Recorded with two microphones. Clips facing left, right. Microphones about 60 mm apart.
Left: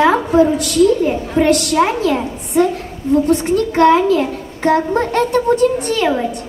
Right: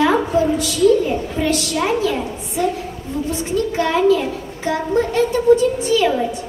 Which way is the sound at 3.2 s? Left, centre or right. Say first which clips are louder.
Left 6 dB; left.